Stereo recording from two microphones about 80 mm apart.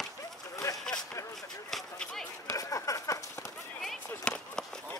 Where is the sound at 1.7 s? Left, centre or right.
Centre.